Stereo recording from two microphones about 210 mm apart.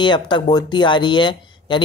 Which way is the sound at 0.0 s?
20° left (ahead or behind).